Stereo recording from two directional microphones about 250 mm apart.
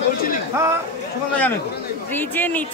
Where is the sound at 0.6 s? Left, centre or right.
Centre.